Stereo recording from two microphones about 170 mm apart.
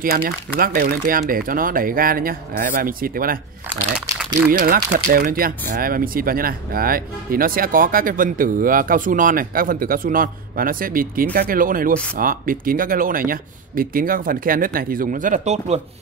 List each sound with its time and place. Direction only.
0.0 s speech: 60° right (ahead or behind)
4.5 s speech: 55° right (ahead or behind)